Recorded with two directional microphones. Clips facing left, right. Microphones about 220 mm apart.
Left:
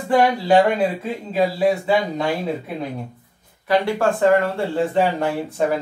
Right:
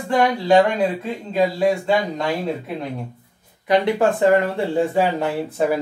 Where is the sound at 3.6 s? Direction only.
20° right (ahead or behind).